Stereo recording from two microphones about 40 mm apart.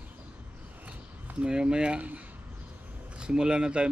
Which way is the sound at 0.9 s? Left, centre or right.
Right.